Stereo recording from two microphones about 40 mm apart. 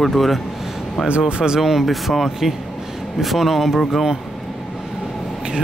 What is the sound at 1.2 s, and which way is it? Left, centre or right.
Speech, right.